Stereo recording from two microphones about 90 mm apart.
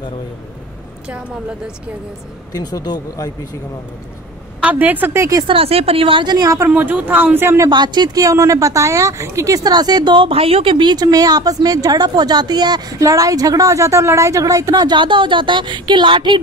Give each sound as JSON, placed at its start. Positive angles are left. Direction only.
{"t": 2.5, "sound": "speech", "side_deg": 45}
{"t": 4.6, "sound": "speech", "side_deg": -15}
{"t": 5.5, "sound": "speech", "side_deg": -90}
{"t": 6.2, "sound": "a woman's voice", "side_deg": -45}
{"t": 6.7, "sound": "speech", "side_deg": -20}
{"t": 7.7, "sound": "speech", "side_deg": -55}
{"t": 10.1, "sound": "a woman's voice", "side_deg": -85}
{"t": 15.0, "sound": "speech", "side_deg": -65}